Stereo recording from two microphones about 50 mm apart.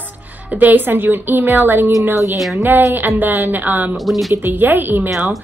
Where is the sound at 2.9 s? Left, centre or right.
Right.